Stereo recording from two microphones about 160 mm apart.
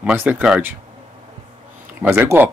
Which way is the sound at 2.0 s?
15° right (ahead or behind).